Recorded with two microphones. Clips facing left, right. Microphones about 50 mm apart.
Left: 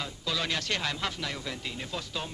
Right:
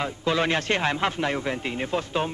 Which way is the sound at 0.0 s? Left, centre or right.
Right.